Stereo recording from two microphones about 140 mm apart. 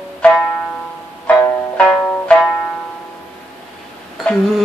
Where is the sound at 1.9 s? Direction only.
10° left (ahead or behind).